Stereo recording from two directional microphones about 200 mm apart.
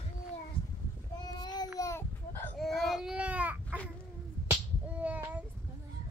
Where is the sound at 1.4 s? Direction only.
20° left (ahead or behind).